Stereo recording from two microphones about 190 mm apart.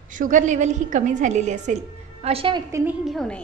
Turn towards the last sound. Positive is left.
turn(degrees=0)  # may be behind; listen again after turning